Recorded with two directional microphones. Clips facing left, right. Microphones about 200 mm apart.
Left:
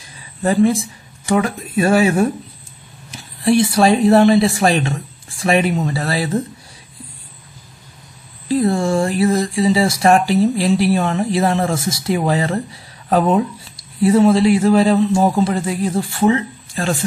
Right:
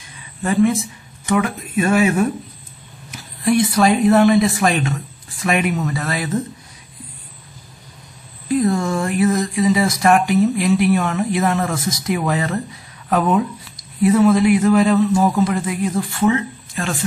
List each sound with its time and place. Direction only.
0.4 s speech: 35° left (ahead or behind)
8.5 s speech: 30° left (ahead or behind)